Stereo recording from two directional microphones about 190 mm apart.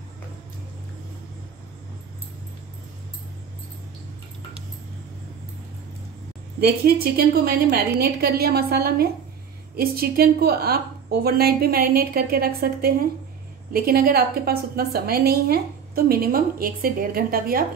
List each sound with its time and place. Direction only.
6.6 s a woman's voice: 55° right (ahead or behind)